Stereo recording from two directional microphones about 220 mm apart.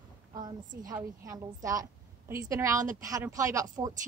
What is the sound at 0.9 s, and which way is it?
A woman's voice, 15° right (ahead or behind).